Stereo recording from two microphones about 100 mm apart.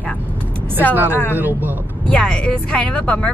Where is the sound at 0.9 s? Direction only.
20° right (ahead or behind).